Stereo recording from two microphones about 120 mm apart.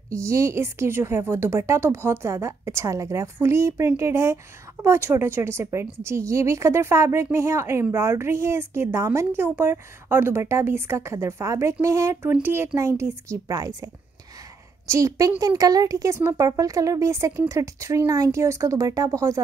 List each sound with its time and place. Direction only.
0.1 s speech: 25° right (ahead or behind)
14.9 s speech: 25° right (ahead or behind)